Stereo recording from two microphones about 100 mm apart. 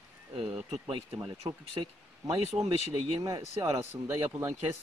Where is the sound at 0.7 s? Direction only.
55° right (ahead or behind).